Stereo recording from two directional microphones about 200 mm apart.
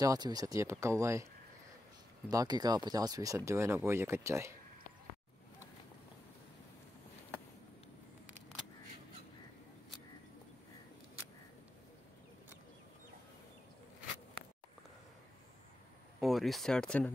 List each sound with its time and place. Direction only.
0.0 s speech: 20° right (ahead or behind)
16.2 s speech: centre (ahead or behind)